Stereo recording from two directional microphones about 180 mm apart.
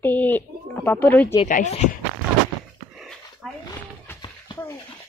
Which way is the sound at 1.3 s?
40° left (ahead or behind).